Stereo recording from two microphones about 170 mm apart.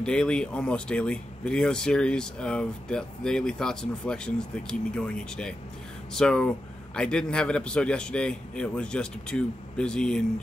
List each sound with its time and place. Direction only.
0.0 s speech: 5° left (ahead or behind)